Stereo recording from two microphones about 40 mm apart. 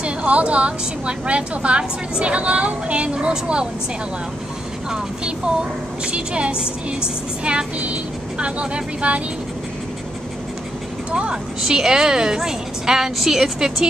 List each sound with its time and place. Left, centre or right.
0.0 s a woman's voice: right
4.9 s a woman's voice: right
11.1 s speech: right
11.6 s a woman's voice: centre